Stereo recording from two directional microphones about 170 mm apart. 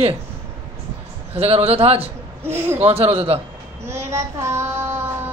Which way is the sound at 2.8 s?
35° right (ahead or behind).